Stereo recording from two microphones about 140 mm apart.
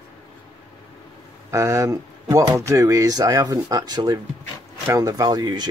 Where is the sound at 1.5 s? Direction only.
20° right (ahead or behind).